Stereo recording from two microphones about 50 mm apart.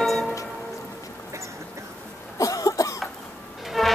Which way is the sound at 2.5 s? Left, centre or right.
Left.